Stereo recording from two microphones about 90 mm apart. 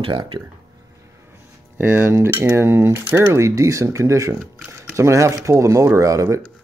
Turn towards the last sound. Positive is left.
turn(degrees=-35)  # may be behind; listen again after turning